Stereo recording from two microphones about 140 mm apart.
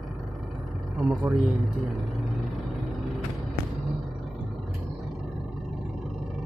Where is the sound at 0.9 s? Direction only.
Centre (ahead or behind).